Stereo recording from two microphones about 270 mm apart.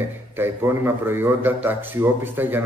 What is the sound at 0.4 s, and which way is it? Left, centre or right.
Speech, centre.